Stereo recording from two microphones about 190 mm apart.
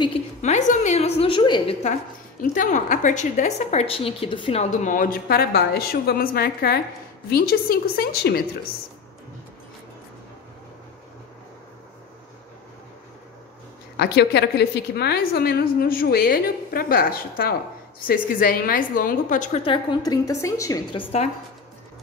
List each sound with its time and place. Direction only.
0.4 s a woman's voice: 40° left (ahead or behind)
2.4 s a woman's voice: 45° left (ahead or behind)
13.9 s a woman's voice: 60° left (ahead or behind); by 19.6 s 45° left (ahead or behind)
19.6 s a woman's voice: 25° left (ahead or behind)